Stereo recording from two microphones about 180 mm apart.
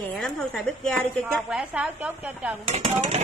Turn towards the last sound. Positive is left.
turn(degrees=-35)  # may be behind; listen again after turning